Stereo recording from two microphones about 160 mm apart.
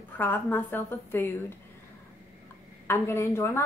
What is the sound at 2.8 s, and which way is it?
Speech, 15° left (ahead or behind).